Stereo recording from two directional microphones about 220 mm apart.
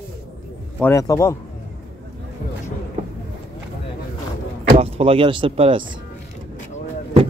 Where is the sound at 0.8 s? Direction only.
15° left (ahead or behind).